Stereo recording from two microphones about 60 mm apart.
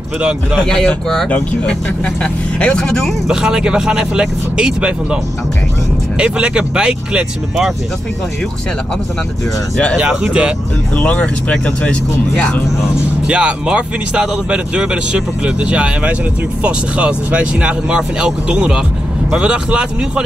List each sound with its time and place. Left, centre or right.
0.6 s speech: centre
1.3 s speech: left
3.3 s speech: centre
10.0 s speech: centre
11.0 s speech: left
13.3 s speech: centre